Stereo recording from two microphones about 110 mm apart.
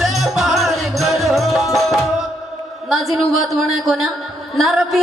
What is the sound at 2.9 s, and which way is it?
A woman's voice, centre (ahead or behind).